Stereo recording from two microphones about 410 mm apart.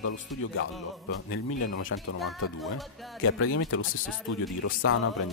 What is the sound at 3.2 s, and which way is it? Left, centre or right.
Speech, left.